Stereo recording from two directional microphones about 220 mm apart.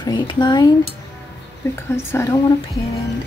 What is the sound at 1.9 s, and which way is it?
Speech, 10° left (ahead or behind).